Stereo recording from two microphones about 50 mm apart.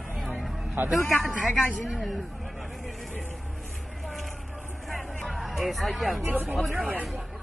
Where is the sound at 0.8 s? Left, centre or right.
Right.